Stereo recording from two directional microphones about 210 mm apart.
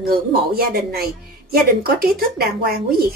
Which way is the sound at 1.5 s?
45° right (ahead or behind).